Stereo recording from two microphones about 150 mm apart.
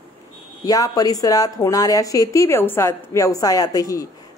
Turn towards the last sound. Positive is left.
turn(degrees=20)  # may be behind; listen again after turning